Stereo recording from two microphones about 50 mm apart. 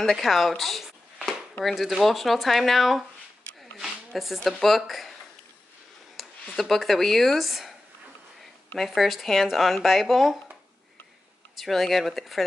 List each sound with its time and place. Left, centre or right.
0.0 s speech: centre
3.8 s a sound: centre
4.5 s speech: centre
6.4 s speech: centre
8.7 s speech: centre
11.5 s speech: centre